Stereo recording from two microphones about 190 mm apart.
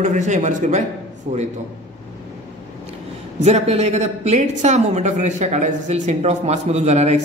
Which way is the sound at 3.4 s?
35° right (ahead or behind).